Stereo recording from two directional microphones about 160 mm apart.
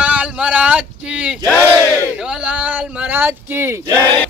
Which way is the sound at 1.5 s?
15° left (ahead or behind).